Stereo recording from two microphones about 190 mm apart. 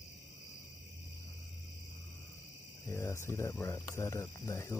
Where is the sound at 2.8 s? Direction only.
15° left (ahead or behind).